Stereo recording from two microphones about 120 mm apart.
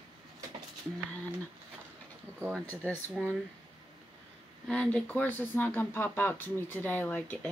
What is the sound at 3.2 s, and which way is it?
Speech, 5° right (ahead or behind).